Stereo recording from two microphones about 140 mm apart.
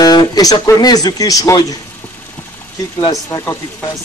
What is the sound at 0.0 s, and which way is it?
Speech, 30° left (ahead or behind).